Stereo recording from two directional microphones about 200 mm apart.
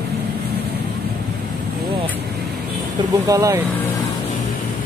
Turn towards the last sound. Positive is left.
turn(degrees=-15)  # may be behind; listen again after turning